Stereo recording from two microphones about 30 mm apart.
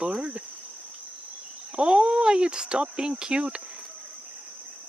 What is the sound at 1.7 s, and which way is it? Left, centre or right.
Speech, right.